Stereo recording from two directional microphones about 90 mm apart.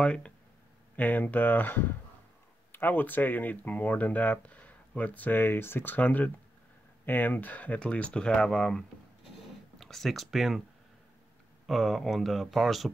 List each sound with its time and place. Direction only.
0.0 s speech: 10° left (ahead or behind)
11.6 s speech: centre (ahead or behind)